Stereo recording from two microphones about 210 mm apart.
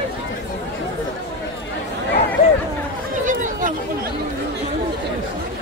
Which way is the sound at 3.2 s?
35° right (ahead or behind).